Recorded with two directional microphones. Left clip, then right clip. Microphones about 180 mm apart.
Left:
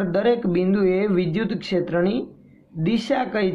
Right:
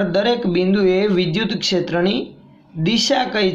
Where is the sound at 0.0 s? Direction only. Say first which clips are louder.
Right 3 dB; 15° left (ahead or behind).